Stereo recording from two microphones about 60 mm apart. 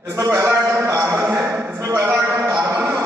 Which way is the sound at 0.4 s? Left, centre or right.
Right.